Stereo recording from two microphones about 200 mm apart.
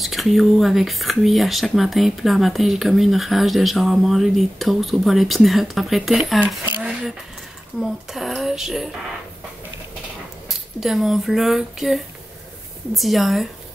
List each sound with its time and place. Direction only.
0.0 s speech: centre (ahead or behind)
10.8 s speech: centre (ahead or behind)